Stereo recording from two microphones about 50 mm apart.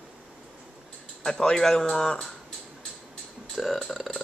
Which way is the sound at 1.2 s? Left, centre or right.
Centre.